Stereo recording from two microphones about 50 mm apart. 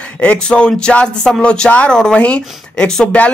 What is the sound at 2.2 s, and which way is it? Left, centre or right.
Speech, left.